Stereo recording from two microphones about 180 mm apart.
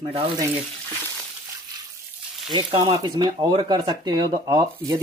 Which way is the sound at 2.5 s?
35° right (ahead or behind).